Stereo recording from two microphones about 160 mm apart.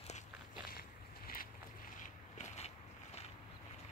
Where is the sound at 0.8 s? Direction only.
70° left (ahead or behind).